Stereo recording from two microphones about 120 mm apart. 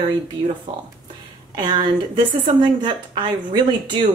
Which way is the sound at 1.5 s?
40° right (ahead or behind).